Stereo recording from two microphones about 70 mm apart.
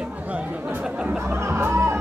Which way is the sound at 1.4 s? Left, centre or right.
Right.